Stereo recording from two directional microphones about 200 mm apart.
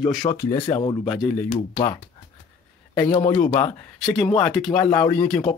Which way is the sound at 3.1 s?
35° left (ahead or behind).